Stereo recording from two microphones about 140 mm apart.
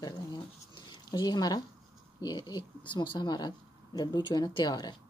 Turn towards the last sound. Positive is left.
turn(degrees=30)  # may be behind; listen again after turning